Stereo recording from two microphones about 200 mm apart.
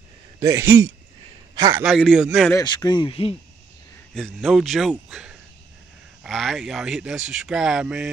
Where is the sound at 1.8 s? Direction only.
Centre (ahead or behind).